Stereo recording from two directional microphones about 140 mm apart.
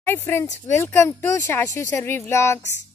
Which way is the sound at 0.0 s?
15° left (ahead or behind).